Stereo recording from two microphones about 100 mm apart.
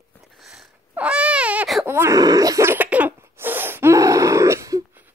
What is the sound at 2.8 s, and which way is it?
Cough, 15° right (ahead or behind).